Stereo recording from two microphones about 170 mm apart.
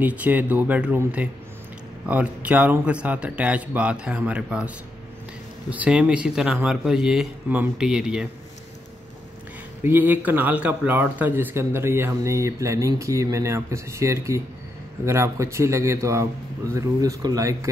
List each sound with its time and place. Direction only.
0.0 s a man's voice: 10° right (ahead or behind)
9.8 s a man's voice: 10° right (ahead or behind)